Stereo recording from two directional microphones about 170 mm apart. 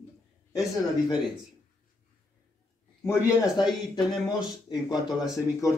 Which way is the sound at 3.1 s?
20° left (ahead or behind).